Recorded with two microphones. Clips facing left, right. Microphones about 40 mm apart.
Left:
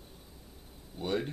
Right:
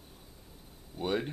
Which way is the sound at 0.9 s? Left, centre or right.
Centre.